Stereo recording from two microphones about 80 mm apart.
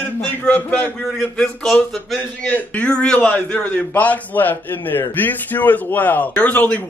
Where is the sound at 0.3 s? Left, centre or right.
Left.